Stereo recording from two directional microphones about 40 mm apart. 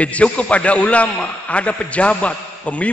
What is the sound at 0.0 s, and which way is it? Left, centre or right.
A man's voice, left.